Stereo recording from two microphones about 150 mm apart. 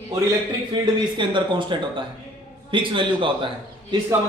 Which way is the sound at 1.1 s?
30° right (ahead or behind).